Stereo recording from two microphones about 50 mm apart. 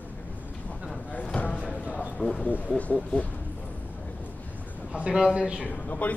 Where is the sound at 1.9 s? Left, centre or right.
Right.